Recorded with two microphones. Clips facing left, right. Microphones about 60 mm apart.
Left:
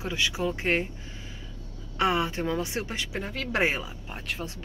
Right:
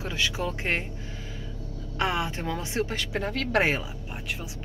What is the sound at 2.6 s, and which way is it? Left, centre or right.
Speech, right.